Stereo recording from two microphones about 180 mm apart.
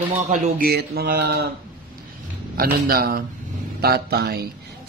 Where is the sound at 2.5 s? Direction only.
55° right (ahead or behind).